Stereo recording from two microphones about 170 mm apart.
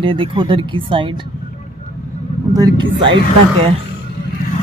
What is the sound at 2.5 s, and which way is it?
Speech, 25° right (ahead or behind).